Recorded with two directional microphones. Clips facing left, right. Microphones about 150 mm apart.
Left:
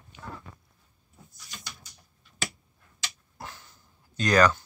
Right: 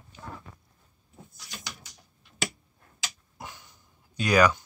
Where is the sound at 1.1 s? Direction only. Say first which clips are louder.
Right 3 dB; 80° right.